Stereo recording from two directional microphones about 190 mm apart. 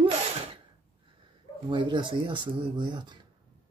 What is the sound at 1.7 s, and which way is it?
Speech, 25° right (ahead or behind).